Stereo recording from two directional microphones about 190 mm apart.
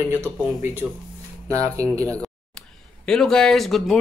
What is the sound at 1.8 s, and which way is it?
Speech, 10° left (ahead or behind).